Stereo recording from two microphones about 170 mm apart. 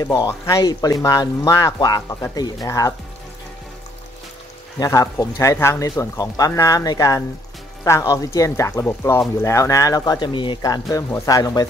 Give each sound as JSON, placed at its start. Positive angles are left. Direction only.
{"t": 0.0, "sound": "speech", "side_deg": 20}
{"t": 4.7, "sound": "speech", "side_deg": 20}